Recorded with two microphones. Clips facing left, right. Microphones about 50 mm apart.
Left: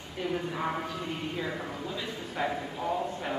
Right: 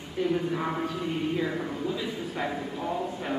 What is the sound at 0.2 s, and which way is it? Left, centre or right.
A man's voice, centre.